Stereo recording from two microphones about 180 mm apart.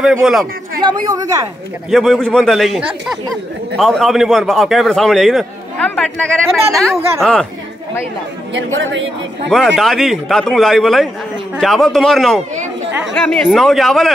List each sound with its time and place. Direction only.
0.0 s a man's voice: centre (ahead or behind)
0.7 s speech: 20° right (ahead or behind)
1.9 s a man's voice: centre (ahead or behind)
8.5 s speech: 90° right
9.8 s a man's voice: centre (ahead or behind)